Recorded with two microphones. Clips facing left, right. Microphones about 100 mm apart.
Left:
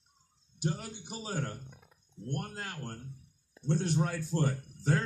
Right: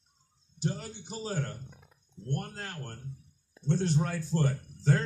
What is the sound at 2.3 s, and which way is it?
A man's voice, 10° left (ahead or behind).